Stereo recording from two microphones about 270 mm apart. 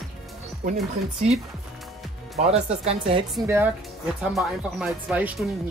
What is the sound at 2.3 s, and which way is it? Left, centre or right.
Speech, right.